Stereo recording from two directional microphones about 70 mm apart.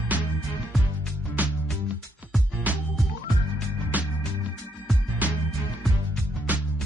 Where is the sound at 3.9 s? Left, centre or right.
Right.